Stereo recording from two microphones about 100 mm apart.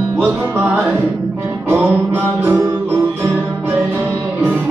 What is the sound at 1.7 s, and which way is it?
Music, 25° right (ahead or behind).